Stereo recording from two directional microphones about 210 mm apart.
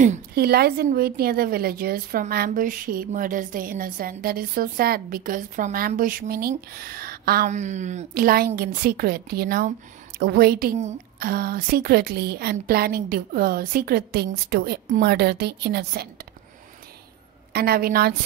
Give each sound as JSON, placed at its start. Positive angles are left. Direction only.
{"t": 0.0, "sound": "a woman's voice", "side_deg": -40}
{"t": 17.5, "sound": "a woman's voice", "side_deg": -45}